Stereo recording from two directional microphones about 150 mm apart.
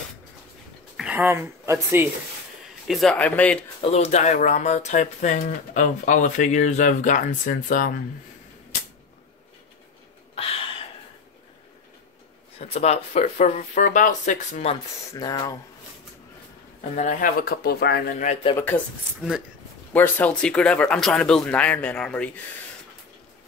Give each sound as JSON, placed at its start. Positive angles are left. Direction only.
{"t": 0.9, "sound": "a sound", "side_deg": -5}
{"t": 1.3, "sound": "speech", "side_deg": -20}
{"t": 2.9, "sound": "speech", "side_deg": 0}
{"t": 3.8, "sound": "speech", "side_deg": 45}
{"t": 10.3, "sound": "a sound", "side_deg": 40}
{"t": 12.5, "sound": "speech", "side_deg": 45}
{"t": 15.1, "sound": "speech", "side_deg": 25}
{"t": 16.9, "sound": "speech", "side_deg": 55}
{"t": 19.9, "sound": "speech", "side_deg": 10}